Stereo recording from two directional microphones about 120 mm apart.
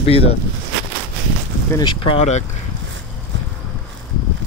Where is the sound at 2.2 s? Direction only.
75° left (ahead or behind).